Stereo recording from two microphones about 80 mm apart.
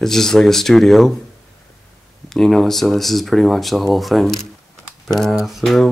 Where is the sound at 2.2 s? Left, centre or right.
Centre.